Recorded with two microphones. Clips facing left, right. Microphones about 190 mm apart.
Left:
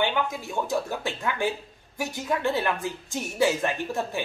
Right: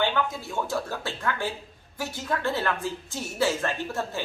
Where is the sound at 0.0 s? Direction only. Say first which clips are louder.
Even; 15° left (ahead or behind).